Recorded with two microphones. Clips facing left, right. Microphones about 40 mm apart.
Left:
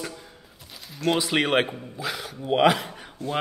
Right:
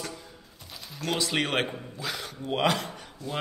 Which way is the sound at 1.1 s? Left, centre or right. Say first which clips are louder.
Left 5 dB; centre.